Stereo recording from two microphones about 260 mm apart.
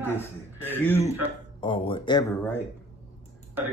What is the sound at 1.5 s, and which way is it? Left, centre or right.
Speech, centre.